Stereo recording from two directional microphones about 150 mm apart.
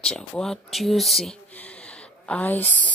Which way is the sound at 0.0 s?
5° left (ahead or behind).